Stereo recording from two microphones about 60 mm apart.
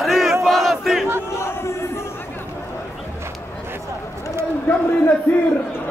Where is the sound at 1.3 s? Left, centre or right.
Left.